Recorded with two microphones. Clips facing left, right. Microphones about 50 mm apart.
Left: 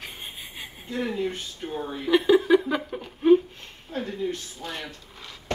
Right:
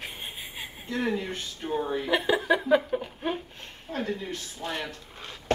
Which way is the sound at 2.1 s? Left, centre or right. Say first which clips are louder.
Left 7 dB; centre.